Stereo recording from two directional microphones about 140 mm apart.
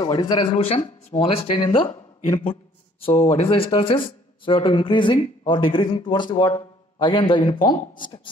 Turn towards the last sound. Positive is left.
turn(degrees=30)  # may be behind; listen again after turning